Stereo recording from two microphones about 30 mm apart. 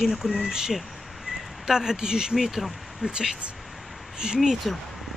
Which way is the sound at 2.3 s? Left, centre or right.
Centre.